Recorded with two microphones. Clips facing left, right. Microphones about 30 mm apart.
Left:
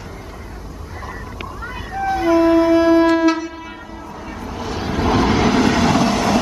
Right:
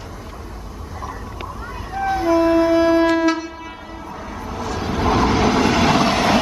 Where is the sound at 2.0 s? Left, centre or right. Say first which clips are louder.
Left 2 dB; centre.